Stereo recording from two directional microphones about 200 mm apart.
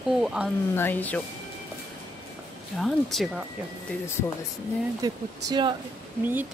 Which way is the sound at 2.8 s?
Centre (ahead or behind).